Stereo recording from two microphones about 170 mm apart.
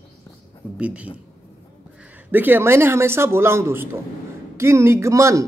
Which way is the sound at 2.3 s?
10° right (ahead or behind).